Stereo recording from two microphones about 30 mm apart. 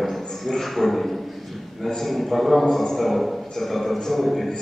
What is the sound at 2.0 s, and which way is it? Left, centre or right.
A man's voice, centre.